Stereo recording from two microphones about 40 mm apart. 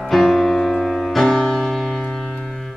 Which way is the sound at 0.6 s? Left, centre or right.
Centre.